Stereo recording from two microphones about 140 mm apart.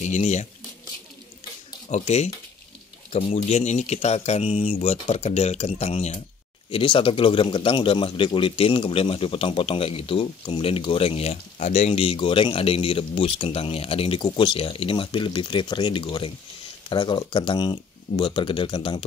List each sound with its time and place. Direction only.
0.0 s speech: 55° left (ahead or behind)
1.9 s speech: 55° left (ahead or behind)
6.7 s a man's voice: 40° left (ahead or behind)